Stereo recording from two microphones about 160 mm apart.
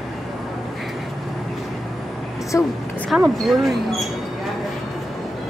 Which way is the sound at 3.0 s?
Centre (ahead or behind).